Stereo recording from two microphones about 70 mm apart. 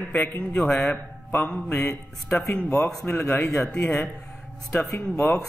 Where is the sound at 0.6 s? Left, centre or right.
Centre.